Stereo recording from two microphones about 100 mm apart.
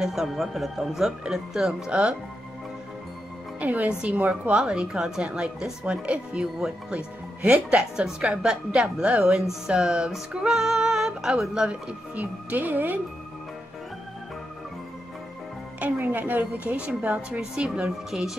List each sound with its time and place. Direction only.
0.0 s speech: centre (ahead or behind)
3.5 s a woman's voice: 15° right (ahead or behind)
15.8 s a woman's voice: 15° right (ahead or behind)